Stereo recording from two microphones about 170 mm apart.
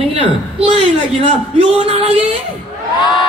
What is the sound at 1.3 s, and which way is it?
Speech, 35° right (ahead or behind).